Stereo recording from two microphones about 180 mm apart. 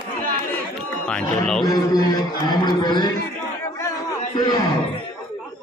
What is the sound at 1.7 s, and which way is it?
A man's voice, 20° left (ahead or behind).